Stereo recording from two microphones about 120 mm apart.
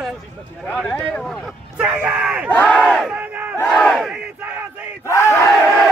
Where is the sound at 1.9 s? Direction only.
10° right (ahead or behind).